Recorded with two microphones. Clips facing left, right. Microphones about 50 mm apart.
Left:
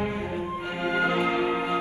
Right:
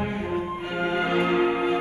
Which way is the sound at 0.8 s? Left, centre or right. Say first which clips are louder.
Right 1 dB; right.